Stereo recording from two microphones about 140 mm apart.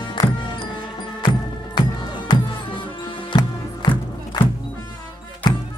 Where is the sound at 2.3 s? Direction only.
30° left (ahead or behind).